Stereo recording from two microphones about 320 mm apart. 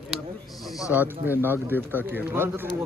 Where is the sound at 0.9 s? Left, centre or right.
Centre.